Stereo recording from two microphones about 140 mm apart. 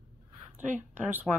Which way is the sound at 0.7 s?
10° right (ahead or behind).